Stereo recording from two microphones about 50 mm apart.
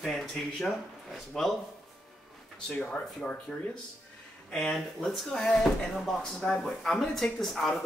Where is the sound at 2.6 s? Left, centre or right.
Left.